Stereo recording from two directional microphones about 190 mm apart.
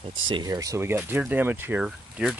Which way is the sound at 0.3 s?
20° right (ahead or behind).